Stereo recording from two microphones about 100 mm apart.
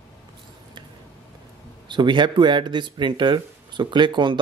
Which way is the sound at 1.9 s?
50° right (ahead or behind).